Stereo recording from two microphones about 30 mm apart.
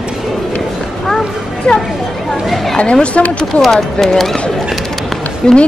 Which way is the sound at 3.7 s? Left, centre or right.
Centre.